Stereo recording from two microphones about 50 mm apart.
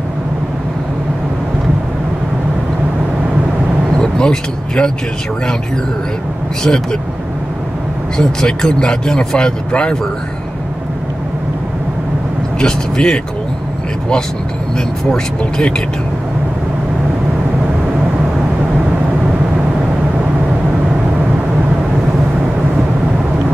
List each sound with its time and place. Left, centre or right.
4.0 s speech: centre
6.6 s speech: centre
8.2 s speech: centre
12.5 s speech: centre
15.0 s speech: centre